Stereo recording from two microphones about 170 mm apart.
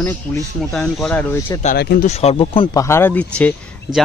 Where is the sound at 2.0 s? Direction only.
40° left (ahead or behind).